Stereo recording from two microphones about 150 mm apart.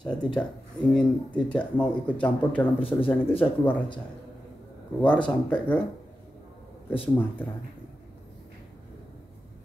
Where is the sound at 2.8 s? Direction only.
35° left (ahead or behind).